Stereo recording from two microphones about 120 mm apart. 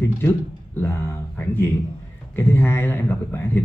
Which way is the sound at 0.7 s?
20° left (ahead or behind).